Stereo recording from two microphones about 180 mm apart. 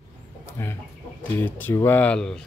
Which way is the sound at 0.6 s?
10° left (ahead or behind).